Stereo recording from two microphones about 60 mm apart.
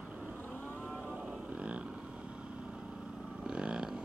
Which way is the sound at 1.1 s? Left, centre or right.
Right.